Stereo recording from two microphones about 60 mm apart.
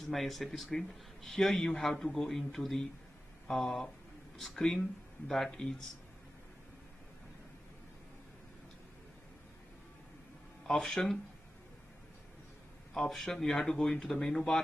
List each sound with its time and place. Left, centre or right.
0.0 s a man's voice: centre
10.7 s speech: centre
12.9 s speech: centre